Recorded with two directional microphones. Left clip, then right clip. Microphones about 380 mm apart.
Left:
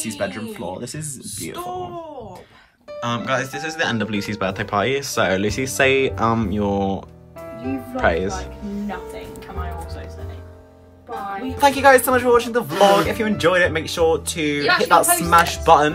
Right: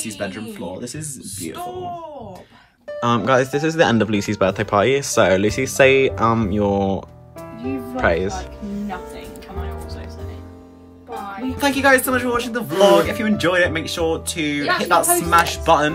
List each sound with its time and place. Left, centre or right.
0.0 s speech: centre
3.0 s speech: centre
11.5 s speech: centre